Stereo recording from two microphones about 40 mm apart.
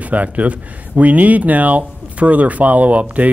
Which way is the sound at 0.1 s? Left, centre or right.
Right.